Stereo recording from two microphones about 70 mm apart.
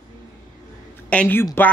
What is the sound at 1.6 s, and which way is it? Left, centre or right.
Speech, left.